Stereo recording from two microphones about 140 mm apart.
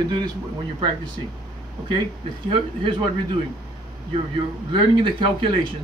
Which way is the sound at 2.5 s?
35° right (ahead or behind).